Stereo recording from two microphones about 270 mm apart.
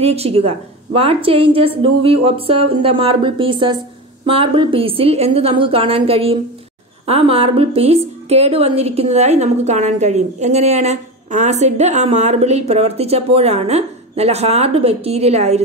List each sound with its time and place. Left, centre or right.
0.0 s a woman's voice: right